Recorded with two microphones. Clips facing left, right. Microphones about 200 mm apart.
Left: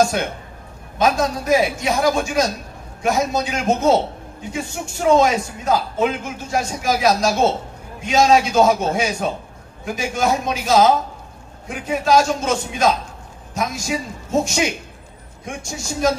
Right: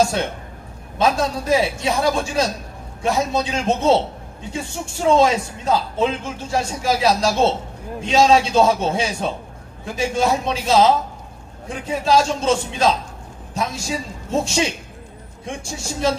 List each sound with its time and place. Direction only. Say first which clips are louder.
0.9 s a man's voice: left 1 dB; 30° right (ahead or behind)